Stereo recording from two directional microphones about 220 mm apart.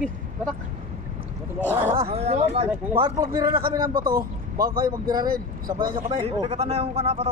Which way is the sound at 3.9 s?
40° right (ahead or behind).